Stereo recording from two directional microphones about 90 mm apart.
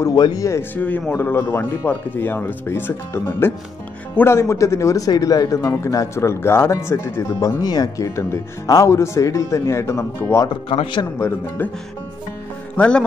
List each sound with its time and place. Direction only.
0.1 s speech: 50° left (ahead or behind)
0.5 s speech: 20° left (ahead or behind)
7.6 s speech: 50° left (ahead or behind); by 10.5 s 30° left (ahead or behind)
10.5 s speech: 65° left (ahead or behind)
11.1 s speech: 30° left (ahead or behind)
12.7 s speech: 10° left (ahead or behind)